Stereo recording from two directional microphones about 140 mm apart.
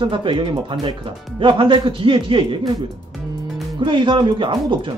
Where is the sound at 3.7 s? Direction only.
35° right (ahead or behind).